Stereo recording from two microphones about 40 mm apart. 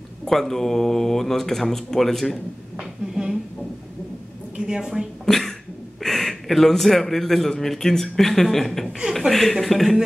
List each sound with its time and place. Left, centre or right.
0.2 s a man's voice: centre
2.8 s a sound: centre
4.6 s a woman's voice: centre
5.2 s a man's voice: centre